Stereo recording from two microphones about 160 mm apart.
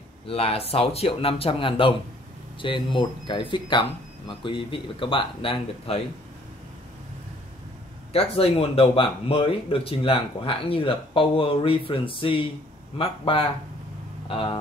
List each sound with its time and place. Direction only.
0.3 s speech: 40° left (ahead or behind)
8.1 s speech: 35° left (ahead or behind)